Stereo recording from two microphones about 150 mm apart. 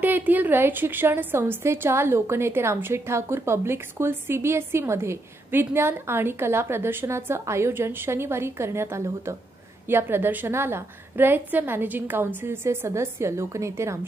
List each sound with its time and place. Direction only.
0.0 s a woman's voice: 10° right (ahead or behind)